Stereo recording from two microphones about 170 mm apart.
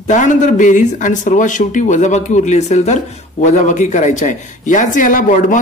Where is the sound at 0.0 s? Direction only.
45° left (ahead or behind).